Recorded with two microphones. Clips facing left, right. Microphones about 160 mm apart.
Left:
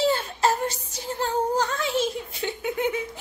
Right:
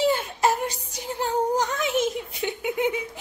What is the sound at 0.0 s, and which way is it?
Child singing, 15° right (ahead or behind).